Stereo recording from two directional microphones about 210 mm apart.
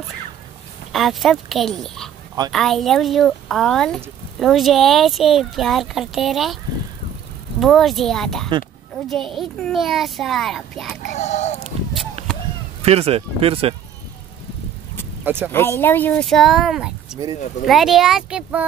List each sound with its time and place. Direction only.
0.9 s speech: centre (ahead or behind)
7.6 s speech: centre (ahead or behind)
11.1 s speech: 35° left (ahead or behind)
12.8 s speech: 30° right (ahead or behind)
15.2 s speech: 10° right (ahead or behind)
15.5 s speech: 10° left (ahead or behind); by 18.7 s 5° right (ahead or behind)